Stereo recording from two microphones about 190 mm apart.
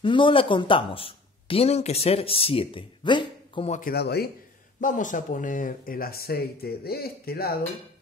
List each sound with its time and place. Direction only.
0.0 s speech: 25° left (ahead or behind)
3.8 s speech: 55° left (ahead or behind)
4.7 s speech: 45° left (ahead or behind)